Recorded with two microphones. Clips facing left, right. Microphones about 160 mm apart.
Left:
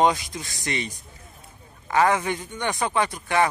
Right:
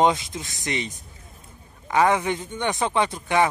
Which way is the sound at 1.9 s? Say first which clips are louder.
Right 1 dB; 20° right (ahead or behind).